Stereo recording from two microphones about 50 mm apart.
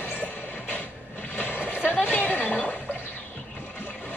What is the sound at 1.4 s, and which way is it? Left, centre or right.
Vehicle, left.